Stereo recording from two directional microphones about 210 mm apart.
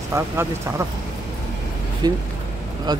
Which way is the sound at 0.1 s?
10° right (ahead or behind).